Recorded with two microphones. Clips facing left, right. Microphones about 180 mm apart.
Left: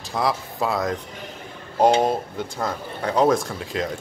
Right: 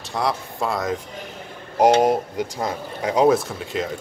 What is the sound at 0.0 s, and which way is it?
Speech, centre (ahead or behind).